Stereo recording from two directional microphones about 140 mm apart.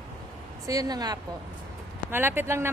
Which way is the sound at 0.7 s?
25° right (ahead or behind).